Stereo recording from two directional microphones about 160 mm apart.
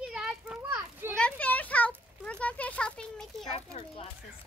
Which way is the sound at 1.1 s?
10° left (ahead or behind).